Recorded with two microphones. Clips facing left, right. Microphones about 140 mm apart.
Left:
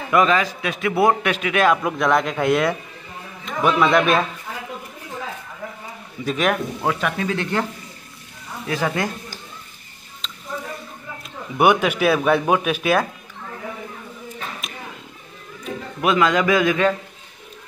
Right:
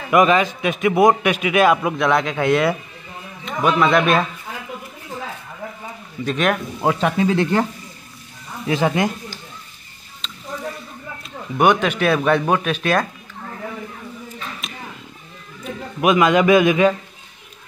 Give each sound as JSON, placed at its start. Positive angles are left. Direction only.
{"t": 0.1, "sound": "a man's voice", "side_deg": -15}
{"t": 6.2, "sound": "speech", "side_deg": 0}
{"t": 6.8, "sound": "speech", "side_deg": -30}
{"t": 8.6, "sound": "speech", "side_deg": -20}
{"t": 10.2, "sound": "a sound", "side_deg": 0}
{"t": 11.5, "sound": "speech", "side_deg": 10}
{"t": 14.6, "sound": "a sound", "side_deg": 0}
{"t": 16.0, "sound": "a man's voice", "side_deg": -15}